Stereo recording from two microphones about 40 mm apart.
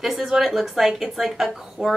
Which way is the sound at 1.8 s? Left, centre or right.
Centre.